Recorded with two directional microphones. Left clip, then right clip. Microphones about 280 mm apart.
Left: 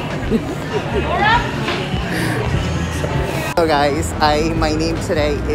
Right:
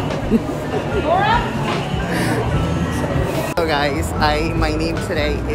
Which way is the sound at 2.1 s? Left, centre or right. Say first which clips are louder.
Right 1 dB; centre.